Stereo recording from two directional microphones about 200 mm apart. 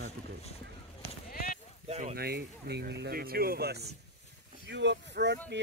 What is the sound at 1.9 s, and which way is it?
Speech, 30° right (ahead or behind).